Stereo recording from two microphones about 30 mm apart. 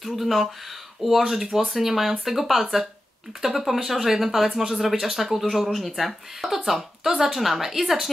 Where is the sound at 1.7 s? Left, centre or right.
Centre.